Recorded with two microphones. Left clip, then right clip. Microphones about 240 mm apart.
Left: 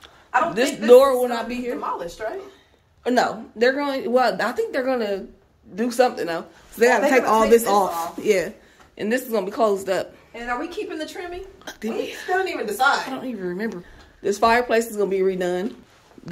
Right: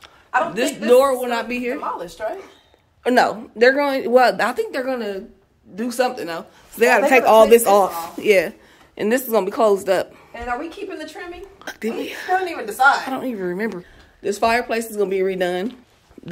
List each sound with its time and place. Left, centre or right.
0.8 s a man's voice: centre
2.0 s speech: right
3.0 s a man's voice: centre
11.6 s a man's voice: centre